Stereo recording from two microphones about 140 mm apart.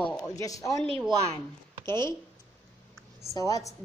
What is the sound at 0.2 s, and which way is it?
Speech, 25° left (ahead or behind).